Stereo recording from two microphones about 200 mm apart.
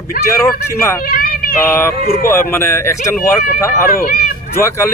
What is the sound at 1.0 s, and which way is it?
Meow, 45° left (ahead or behind).